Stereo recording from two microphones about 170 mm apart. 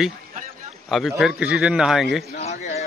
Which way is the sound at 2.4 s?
40° left (ahead or behind).